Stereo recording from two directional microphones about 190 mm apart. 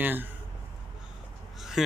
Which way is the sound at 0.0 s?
10° right (ahead or behind).